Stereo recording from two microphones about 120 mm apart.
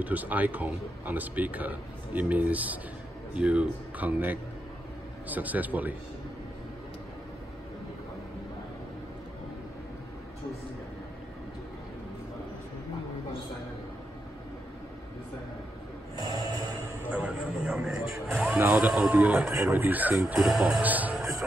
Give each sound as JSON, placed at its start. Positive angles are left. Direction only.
{"t": 0.0, "sound": "speech", "side_deg": -15}
{"t": 16.2, "sound": "a sound", "side_deg": -35}
{"t": 17.0, "sound": "music", "side_deg": -10}
{"t": 19.6, "sound": "speech", "side_deg": -15}